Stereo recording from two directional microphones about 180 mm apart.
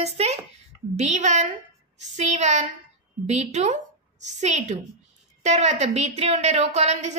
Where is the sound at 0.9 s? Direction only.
40° right (ahead or behind).